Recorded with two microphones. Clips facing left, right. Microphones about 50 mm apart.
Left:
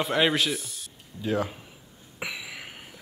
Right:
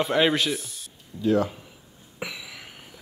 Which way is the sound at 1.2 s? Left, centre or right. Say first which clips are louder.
Right 6 dB; left.